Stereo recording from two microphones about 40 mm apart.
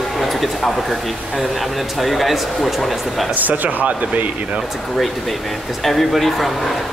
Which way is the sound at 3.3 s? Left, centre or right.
Right.